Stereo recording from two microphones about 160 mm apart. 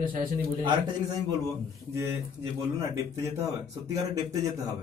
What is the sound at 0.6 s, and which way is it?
Speech, 30° right (ahead or behind).